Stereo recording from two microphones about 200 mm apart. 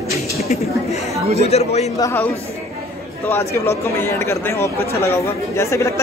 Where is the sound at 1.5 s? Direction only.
35° left (ahead or behind).